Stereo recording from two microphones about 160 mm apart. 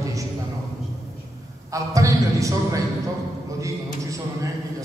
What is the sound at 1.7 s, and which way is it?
A man's voice, 20° right (ahead or behind).